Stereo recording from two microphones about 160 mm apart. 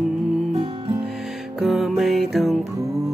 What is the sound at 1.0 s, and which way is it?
Music, centre (ahead or behind).